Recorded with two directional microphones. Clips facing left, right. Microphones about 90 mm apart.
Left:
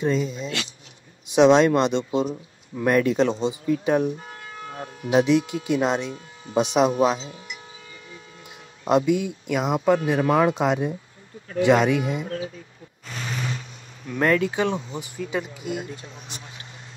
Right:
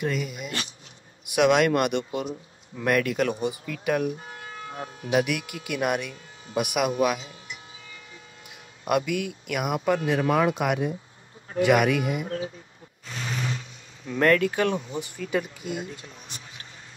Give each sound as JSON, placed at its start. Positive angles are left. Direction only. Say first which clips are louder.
{"t": 0.0, "sound": "speech", "louder": "left 5 dB", "side_deg": 25}
{"t": 8.8, "sound": "speech", "louder": "left 5 dB", "side_deg": 25}
{"t": 14.1, "sound": "speech", "louder": "even", "side_deg": 10}